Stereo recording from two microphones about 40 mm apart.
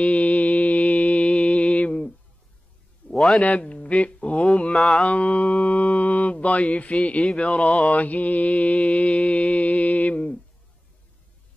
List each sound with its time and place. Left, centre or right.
0.0 s mantra: left
3.0 s a sound: left
3.4 s mantra: left